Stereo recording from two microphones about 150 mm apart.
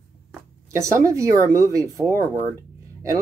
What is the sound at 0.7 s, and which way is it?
Speech, 20° right (ahead or behind).